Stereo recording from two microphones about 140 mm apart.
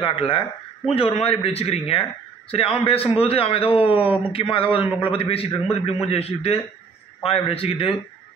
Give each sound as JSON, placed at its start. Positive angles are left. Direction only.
{"t": 0.0, "sound": "a man's voice", "side_deg": 40}